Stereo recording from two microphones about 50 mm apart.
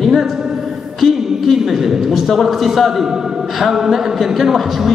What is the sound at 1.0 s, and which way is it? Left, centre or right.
A man's voice, centre.